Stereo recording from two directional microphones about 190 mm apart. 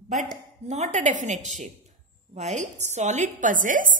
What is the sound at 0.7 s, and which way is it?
A woman's voice, 40° right (ahead or behind).